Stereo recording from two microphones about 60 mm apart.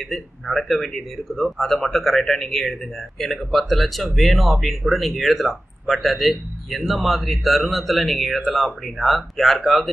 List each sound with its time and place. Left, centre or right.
0.0 s a man's voice: centre